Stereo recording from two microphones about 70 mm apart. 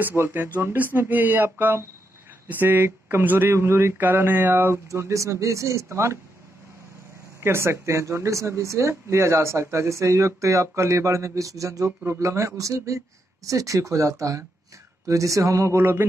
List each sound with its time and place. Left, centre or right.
0.0 s speech: right
4.8 s speech: right
7.3 s speech: right
12.0 s speech: right